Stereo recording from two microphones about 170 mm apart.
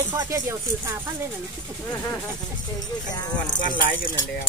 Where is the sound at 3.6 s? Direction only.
55° left (ahead or behind).